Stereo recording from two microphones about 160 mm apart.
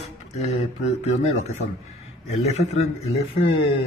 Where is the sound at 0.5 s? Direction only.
45° left (ahead or behind).